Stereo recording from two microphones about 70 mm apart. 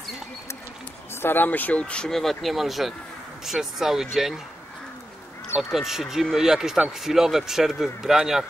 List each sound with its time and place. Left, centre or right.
1.2 s speech: left
2.0 s speech: centre
5.6 s speech: centre